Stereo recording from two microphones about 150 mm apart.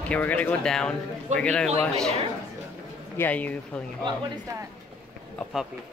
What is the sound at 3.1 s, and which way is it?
Speech, 10° left (ahead or behind).